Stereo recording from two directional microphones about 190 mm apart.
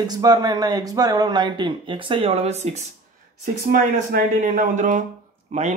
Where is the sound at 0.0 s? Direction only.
20° right (ahead or behind); by 2.9 s 35° right (ahead or behind).